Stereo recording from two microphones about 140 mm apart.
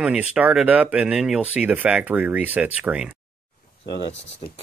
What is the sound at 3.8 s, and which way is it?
Speech, 35° left (ahead or behind).